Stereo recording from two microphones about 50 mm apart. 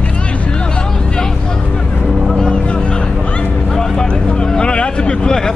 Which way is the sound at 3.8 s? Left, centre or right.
Centre.